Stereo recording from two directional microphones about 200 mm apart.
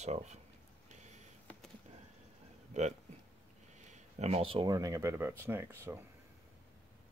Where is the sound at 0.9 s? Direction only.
35° right (ahead or behind).